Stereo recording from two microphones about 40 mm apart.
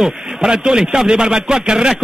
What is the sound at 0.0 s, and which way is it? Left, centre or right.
A man's voice, centre.